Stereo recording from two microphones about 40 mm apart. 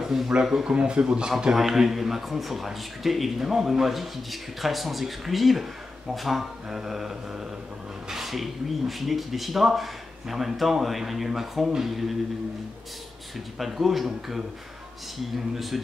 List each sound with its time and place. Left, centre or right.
0.0 s speech: centre
0.7 s speech: right
1.5 s speech: centre
6.1 s mantra: centre
8.1 s speech: centre
13.6 s speech: centre